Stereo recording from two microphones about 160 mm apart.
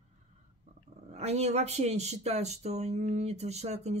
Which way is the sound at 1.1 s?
45° right (ahead or behind).